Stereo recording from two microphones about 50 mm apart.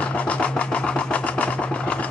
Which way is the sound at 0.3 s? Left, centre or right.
Left.